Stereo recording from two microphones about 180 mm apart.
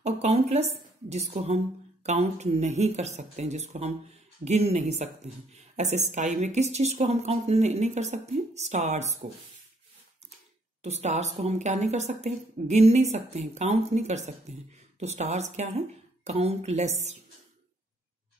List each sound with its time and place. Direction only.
0.0 s speech: 35° right (ahead or behind)
10.8 s speech: 40° right (ahead or behind)